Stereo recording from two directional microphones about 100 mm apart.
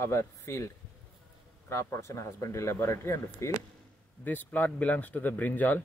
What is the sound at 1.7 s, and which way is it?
Speech, 25° left (ahead or behind).